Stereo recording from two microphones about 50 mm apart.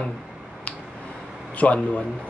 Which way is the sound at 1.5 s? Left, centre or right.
Left.